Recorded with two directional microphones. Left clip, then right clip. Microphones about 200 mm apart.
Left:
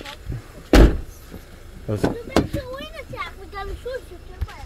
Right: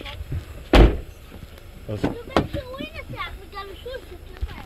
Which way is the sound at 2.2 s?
60° left (ahead or behind).